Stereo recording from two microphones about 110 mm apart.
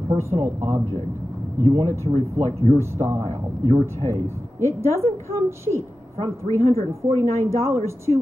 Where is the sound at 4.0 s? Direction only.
25° left (ahead or behind).